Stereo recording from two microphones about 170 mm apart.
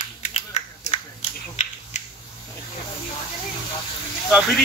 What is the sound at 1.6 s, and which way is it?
Finger snapping, 40° left (ahead or behind).